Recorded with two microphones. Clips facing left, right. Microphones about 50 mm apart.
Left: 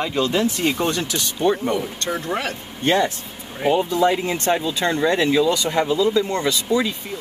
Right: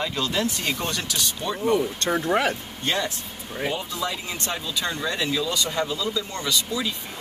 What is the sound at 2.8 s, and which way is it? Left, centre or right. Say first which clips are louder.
Speech: left 7 dB; left.